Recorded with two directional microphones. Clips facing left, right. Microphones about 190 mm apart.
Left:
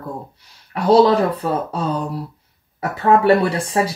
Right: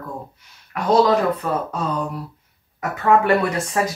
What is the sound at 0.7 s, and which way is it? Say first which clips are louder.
Speech: left 3 dB; 30° left (ahead or behind).